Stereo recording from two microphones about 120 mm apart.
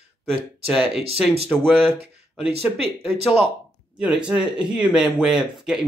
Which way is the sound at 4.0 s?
10° right (ahead or behind).